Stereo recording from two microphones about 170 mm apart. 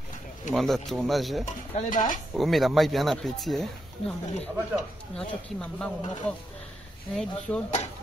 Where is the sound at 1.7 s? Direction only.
50° left (ahead or behind).